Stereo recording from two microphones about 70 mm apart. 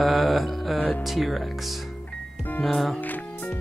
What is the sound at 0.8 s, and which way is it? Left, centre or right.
Speech, left.